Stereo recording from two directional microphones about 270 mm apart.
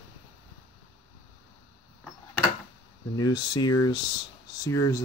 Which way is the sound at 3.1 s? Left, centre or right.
Centre.